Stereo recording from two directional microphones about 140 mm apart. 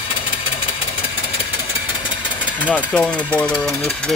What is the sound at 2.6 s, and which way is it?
Speech, 10° left (ahead or behind).